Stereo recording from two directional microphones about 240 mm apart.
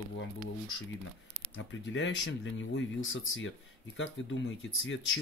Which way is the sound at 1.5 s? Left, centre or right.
Left.